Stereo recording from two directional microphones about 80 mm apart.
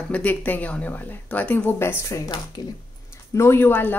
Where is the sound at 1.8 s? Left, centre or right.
Left.